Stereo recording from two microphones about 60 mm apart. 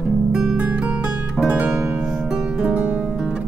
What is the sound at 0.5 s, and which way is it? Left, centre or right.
Music, right.